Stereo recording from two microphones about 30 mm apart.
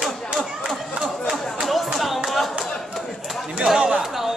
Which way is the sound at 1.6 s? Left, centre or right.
Centre.